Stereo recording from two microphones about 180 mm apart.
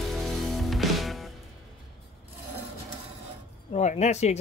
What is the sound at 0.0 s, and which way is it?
Music, centre (ahead or behind).